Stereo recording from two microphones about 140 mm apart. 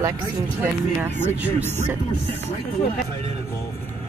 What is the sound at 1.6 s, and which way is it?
Speech, 15° left (ahead or behind).